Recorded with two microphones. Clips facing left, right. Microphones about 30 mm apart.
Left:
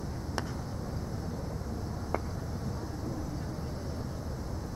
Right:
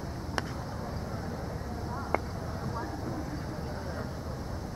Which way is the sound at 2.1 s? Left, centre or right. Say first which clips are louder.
Right 3 dB; right.